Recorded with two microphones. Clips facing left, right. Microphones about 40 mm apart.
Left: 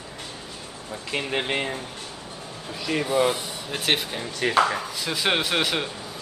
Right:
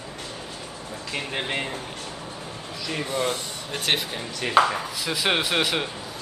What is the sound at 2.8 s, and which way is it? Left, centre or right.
Speech, centre.